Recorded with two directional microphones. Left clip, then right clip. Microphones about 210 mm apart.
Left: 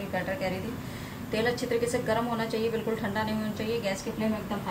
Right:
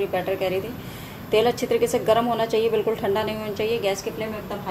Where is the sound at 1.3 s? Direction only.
30° right (ahead or behind).